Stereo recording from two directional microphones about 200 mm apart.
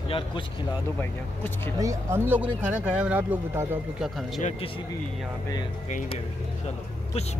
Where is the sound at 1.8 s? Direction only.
15° right (ahead or behind).